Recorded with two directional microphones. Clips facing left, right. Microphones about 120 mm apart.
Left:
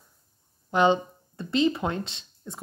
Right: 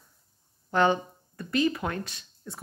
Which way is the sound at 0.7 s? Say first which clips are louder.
Left 2 dB; 20° left (ahead or behind).